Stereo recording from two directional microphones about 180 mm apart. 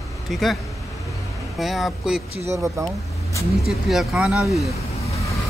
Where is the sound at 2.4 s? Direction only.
15° right (ahead or behind).